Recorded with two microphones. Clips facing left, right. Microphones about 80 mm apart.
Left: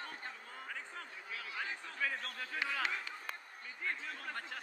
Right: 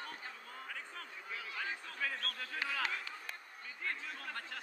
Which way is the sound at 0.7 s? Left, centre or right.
Left.